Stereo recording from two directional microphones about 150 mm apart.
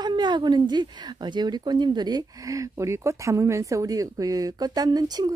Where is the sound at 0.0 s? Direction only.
30° right (ahead or behind).